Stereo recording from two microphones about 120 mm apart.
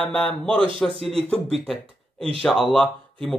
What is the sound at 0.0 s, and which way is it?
Speech, 5° left (ahead or behind).